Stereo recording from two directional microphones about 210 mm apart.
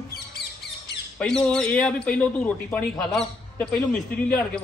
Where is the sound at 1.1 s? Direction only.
5° left (ahead or behind).